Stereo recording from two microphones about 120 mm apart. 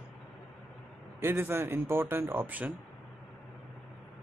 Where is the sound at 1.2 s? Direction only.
20° right (ahead or behind).